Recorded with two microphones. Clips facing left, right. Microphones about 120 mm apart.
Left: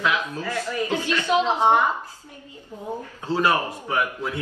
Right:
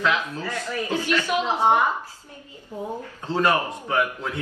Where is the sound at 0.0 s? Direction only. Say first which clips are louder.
Even; 15° left (ahead or behind).